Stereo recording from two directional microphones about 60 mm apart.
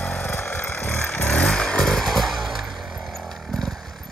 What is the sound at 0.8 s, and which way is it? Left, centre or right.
Vehicle, left.